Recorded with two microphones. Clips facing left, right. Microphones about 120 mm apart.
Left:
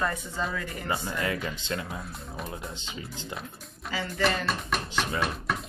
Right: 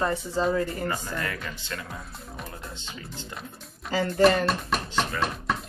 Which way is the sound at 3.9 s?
45° right (ahead or behind).